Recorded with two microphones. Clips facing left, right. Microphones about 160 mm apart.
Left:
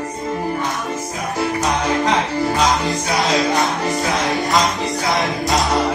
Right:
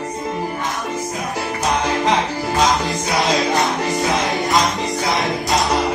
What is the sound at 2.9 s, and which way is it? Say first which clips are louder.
Music: even; centre (ahead or behind).